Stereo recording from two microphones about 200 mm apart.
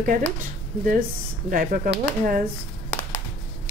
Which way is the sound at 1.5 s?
45° right (ahead or behind).